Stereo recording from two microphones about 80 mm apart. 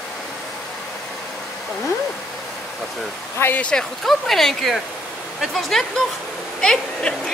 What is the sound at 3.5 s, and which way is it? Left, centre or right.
Speech, centre.